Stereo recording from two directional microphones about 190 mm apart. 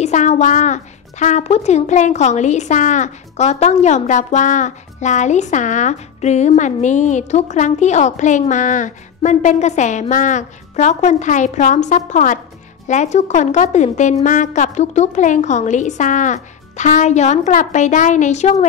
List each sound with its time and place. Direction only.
0.0 s speech: 40° left (ahead or behind)